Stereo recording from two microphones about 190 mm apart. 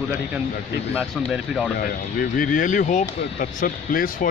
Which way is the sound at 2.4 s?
45° left (ahead or behind).